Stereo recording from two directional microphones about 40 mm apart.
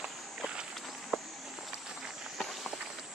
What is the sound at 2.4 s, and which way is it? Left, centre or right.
Run, centre.